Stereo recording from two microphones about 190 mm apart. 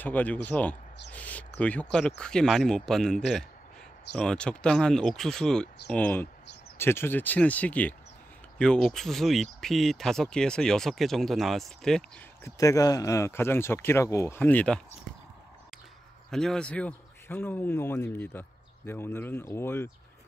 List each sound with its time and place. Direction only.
0.0 s a man's voice: 10° left (ahead or behind)
12.4 s a man's voice: 15° left (ahead or behind)
16.3 s a man's voice: 5° left (ahead or behind)